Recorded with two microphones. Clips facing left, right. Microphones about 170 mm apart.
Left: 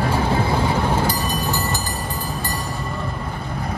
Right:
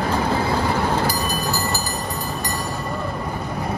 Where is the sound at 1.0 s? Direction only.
10° right (ahead or behind).